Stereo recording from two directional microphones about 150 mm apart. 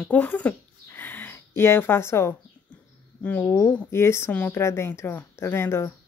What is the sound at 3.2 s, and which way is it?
Speech, 10° left (ahead or behind).